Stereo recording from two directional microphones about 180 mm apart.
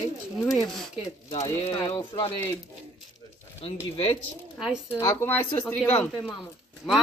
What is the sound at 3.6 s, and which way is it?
Speech, 30° left (ahead or behind).